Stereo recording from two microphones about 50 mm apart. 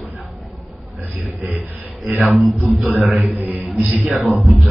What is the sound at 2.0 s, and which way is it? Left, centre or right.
A man's voice, centre.